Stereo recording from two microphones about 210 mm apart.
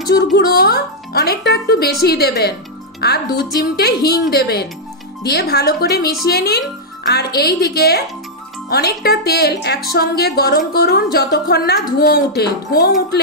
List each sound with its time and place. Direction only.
0.1 s speech: 50° left (ahead or behind)